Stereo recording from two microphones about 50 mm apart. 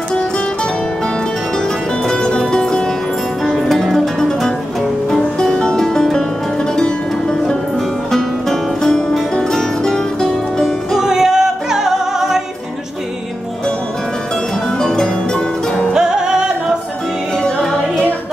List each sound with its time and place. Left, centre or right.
2.0 s music: centre
10.9 s music: centre
14.8 s music: centre
15.9 s music: centre
17.4 s music: centre